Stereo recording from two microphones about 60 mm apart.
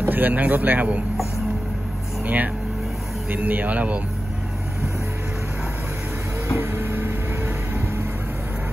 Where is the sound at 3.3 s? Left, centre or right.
Right.